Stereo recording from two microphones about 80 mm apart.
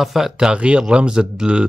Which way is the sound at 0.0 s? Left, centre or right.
Centre.